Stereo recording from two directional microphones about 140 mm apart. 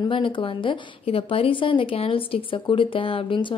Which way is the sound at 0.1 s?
40° left (ahead or behind).